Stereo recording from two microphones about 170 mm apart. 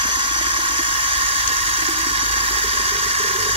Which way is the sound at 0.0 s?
30° right (ahead or behind).